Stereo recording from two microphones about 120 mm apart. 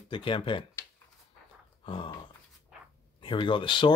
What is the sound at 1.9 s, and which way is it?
Speech, 45° left (ahead or behind).